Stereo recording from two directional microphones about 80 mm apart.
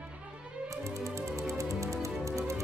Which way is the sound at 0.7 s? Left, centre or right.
Right.